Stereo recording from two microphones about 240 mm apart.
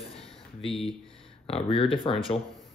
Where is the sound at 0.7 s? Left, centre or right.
Centre.